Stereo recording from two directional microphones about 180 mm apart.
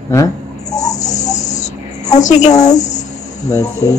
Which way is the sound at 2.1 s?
40° left (ahead or behind).